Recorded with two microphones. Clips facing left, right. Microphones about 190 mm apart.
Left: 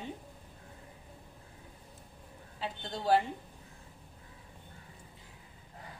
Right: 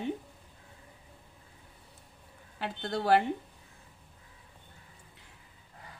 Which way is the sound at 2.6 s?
70° right (ahead or behind).